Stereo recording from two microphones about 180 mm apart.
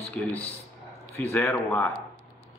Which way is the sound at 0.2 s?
10° left (ahead or behind).